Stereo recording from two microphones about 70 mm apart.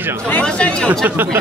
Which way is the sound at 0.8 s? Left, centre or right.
Right.